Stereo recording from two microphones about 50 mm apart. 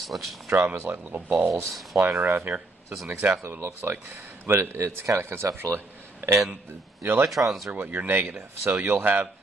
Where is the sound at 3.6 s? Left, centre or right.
Right.